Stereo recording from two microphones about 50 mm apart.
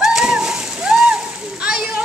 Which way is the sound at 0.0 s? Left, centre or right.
Centre.